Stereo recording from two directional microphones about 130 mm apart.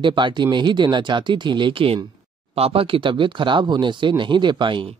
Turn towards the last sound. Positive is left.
turn(degrees=-40)  # may be behind; listen again after turning